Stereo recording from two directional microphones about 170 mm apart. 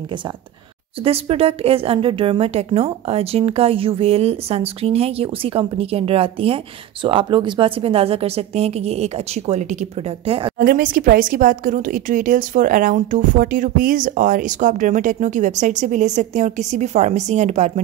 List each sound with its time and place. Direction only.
1.0 s speech: 35° right (ahead or behind)
10.6 s a woman's voice: 55° right (ahead or behind)